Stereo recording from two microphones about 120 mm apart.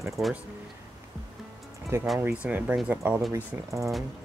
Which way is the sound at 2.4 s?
15° right (ahead or behind).